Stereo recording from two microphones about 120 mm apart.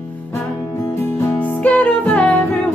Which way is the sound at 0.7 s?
25° left (ahead or behind).